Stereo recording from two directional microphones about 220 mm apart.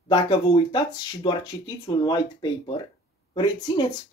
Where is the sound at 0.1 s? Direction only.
20° left (ahead or behind).